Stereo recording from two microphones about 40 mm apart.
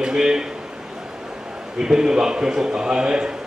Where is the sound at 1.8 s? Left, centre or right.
Centre.